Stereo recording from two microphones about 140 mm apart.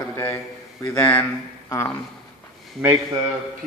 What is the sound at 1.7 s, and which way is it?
Speech, 20° left (ahead or behind).